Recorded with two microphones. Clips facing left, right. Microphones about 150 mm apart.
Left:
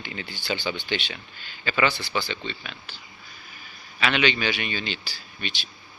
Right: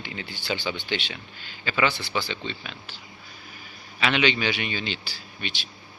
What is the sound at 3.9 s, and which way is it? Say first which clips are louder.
A man's voice: even; 20° right (ahead or behind).